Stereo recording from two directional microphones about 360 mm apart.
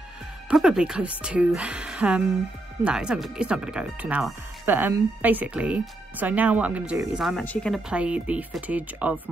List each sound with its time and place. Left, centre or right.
0.5 s speech: centre